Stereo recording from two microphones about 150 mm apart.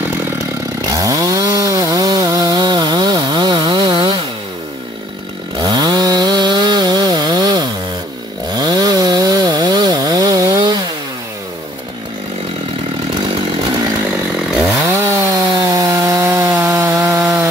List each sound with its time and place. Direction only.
0.8 s chainsaw: 25° right (ahead or behind)
5.6 s chainsaw: 25° right (ahead or behind)
13.3 s chainsaw: 30° right (ahead or behind)
14.9 s chainsaw: 20° right (ahead or behind)